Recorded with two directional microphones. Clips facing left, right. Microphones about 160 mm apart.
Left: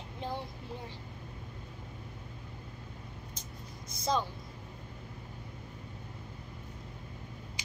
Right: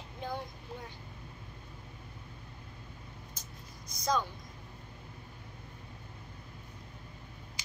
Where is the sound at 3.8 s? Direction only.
25° left (ahead or behind).